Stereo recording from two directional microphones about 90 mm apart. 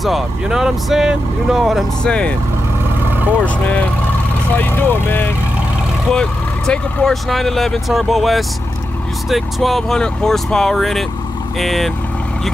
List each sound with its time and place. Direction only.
0.0 s speech: centre (ahead or behind)
2.0 s speech: 10° left (ahead or behind)
3.1 s vehicle: 20° right (ahead or behind)
3.4 s speech: 15° left (ahead or behind)
6.1 s speech: 10° left (ahead or behind)